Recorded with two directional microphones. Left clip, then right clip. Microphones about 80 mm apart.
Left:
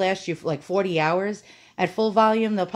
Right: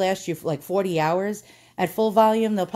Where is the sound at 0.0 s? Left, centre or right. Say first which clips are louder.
Even; right.